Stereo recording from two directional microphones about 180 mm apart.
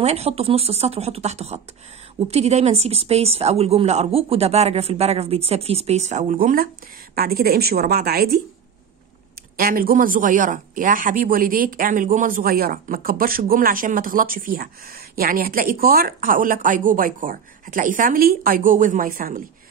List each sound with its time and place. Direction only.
0.0 s a woman's voice: 35° right (ahead or behind); by 8.4 s 60° right (ahead or behind)
9.6 s speech: 55° right (ahead or behind)